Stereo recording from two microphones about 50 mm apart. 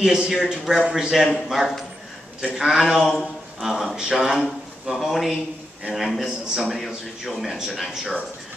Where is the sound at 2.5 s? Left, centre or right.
Centre.